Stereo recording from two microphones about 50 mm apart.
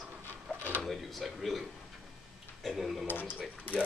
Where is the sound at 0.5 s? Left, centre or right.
Left.